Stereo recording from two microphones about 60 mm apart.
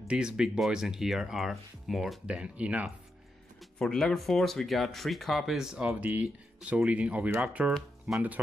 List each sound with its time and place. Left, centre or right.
0.1 s speech: centre
2.2 s speech: centre
3.9 s speech: centre
5.9 s speech: right